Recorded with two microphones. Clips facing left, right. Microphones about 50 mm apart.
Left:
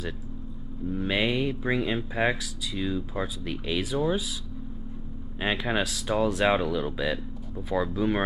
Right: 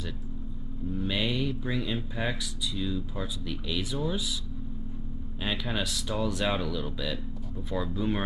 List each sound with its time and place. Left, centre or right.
0.8 s speech: centre
5.4 s speech: left